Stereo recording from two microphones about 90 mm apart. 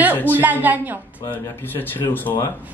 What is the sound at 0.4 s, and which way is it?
Speech, 20° right (ahead or behind).